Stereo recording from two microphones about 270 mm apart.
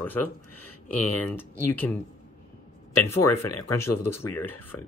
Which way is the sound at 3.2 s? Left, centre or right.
Left.